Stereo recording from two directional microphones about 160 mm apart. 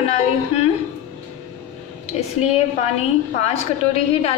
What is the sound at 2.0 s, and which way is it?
A woman's voice, 40° left (ahead or behind).